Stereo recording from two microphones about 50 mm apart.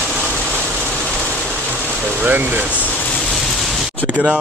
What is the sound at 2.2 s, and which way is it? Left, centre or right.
Speech, right.